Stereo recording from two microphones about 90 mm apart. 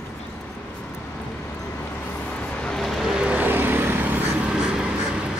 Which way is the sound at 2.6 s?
Centre (ahead or behind).